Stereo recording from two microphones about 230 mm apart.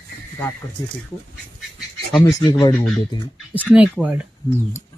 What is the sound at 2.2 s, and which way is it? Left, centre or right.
Speech, centre.